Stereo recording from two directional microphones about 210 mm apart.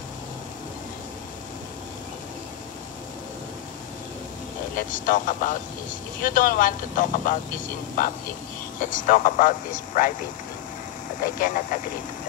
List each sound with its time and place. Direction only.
4.7 s speech: 40° left (ahead or behind)
11.3 s speech: 40° left (ahead or behind)